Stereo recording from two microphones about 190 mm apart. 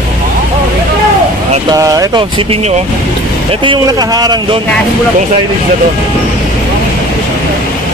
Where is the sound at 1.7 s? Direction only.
20° right (ahead or behind).